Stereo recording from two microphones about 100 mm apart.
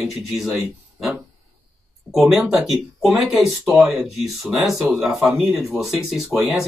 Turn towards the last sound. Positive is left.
turn(degrees=-5)  # may be behind; listen again after turning